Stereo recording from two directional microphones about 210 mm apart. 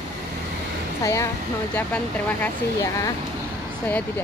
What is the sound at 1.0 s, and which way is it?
Speech, 15° left (ahead or behind).